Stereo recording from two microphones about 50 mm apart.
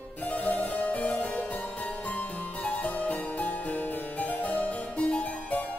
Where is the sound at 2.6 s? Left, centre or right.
Left.